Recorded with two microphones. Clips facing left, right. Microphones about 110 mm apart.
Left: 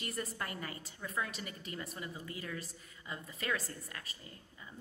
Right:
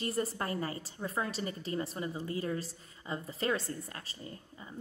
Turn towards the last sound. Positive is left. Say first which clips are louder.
# right 6 dB
turn(degrees=-30)  # may be behind; listen again after turning